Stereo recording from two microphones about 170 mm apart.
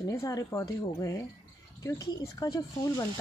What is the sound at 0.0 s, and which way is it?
A woman's voice, 20° left (ahead or behind).